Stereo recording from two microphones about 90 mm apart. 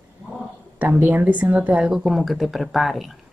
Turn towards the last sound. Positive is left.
turn(degrees=0)  # may be behind; listen again after turning